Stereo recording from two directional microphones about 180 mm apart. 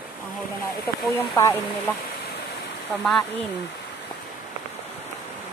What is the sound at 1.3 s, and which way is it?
Speech, 15° left (ahead or behind).